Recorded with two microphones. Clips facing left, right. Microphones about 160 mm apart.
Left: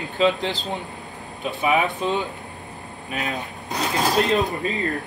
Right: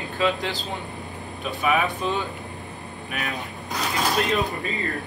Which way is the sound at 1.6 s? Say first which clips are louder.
Left 2 dB; 20° left (ahead or behind).